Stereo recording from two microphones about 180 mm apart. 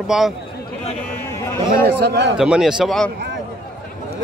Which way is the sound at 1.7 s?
65° right (ahead or behind).